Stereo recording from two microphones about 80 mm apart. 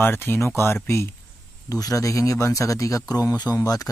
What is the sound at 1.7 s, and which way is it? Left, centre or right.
Speech, left.